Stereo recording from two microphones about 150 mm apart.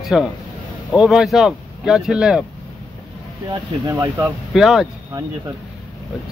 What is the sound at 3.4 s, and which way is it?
Speech, 25° right (ahead or behind).